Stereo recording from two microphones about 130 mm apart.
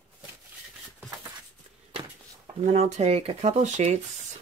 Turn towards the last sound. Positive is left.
turn(degrees=-65)  # may be behind; listen again after turning